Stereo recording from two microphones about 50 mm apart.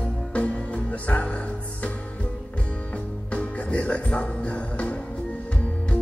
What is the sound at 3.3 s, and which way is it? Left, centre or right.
Music, left.